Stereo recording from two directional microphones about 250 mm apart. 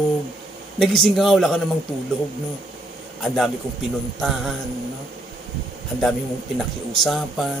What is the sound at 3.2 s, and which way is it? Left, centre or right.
Speech, centre.